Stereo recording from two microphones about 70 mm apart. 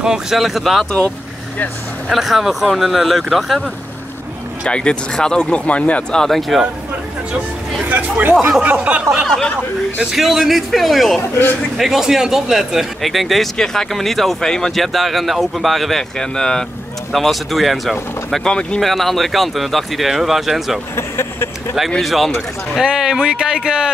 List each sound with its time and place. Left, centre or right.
0.0 s speech: centre
2.0 s speech: centre
4.6 s speech: centre
6.2 s speech: centre
7.9 s speech: right
8.4 s speech: centre
10.1 s speech: centre
18.3 s speech: centre
18.8 s speech: centre
20.9 s speech: left
22.0 s speech: centre